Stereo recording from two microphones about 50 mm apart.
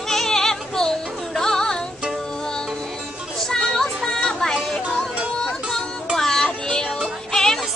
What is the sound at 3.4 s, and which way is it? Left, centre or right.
Music, centre.